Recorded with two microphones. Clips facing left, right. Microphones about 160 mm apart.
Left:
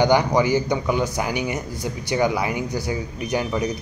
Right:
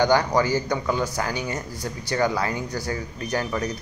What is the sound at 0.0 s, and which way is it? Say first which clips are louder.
A man's voice: left 2 dB; 15° left (ahead or behind).